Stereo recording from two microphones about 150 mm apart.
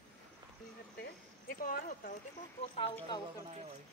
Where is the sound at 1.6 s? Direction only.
70° left (ahead or behind).